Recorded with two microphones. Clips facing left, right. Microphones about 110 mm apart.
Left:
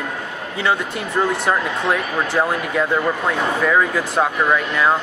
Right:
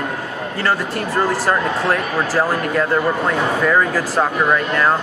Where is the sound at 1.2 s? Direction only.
Centre (ahead or behind).